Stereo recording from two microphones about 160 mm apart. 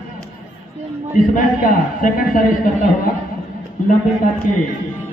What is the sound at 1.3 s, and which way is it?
A man's voice, 55° left (ahead or behind).